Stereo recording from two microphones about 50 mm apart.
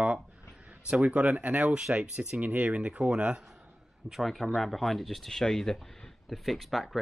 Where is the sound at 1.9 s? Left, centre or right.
Right.